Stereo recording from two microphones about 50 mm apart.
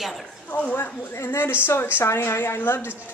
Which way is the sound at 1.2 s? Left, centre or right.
Left.